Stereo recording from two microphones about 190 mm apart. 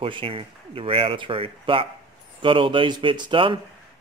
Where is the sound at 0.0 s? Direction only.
30° right (ahead or behind).